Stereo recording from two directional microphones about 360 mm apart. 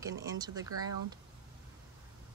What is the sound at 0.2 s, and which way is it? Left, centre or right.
Speech, centre.